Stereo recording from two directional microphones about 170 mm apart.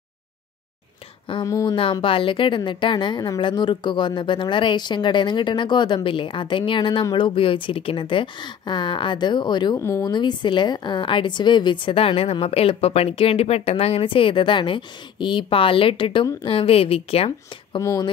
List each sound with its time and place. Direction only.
1.2 s a woman's voice: 30° left (ahead or behind)
9.8 s a woman's voice: 15° left (ahead or behind); by 17.3 s 35° left (ahead or behind)
17.7 s a woman's voice: 20° left (ahead or behind)